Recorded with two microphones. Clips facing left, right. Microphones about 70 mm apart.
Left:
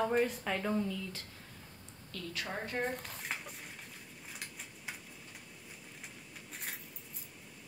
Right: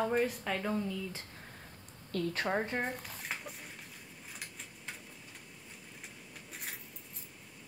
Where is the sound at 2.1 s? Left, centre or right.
Right.